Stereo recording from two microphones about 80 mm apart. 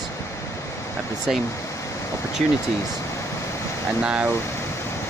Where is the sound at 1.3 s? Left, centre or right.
Centre.